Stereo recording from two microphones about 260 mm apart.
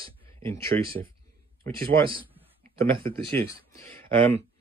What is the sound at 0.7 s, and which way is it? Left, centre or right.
Speech, right.